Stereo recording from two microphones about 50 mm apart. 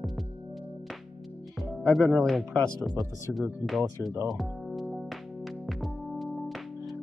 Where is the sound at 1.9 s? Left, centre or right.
Centre.